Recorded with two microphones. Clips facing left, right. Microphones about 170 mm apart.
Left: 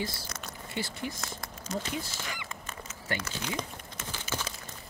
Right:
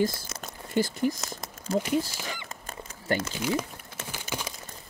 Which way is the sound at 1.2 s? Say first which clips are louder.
Right 3 dB; 20° right (ahead or behind).